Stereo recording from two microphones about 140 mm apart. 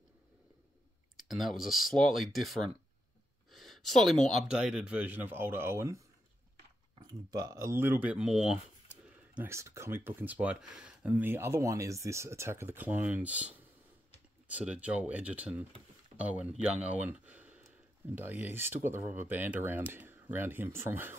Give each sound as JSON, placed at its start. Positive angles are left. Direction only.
{"t": 1.1, "sound": "speech", "side_deg": 0}
{"t": 9.3, "sound": "speech", "side_deg": -15}